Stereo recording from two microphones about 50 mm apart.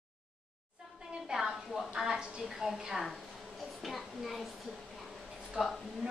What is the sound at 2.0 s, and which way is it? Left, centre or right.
A woman's voice, centre.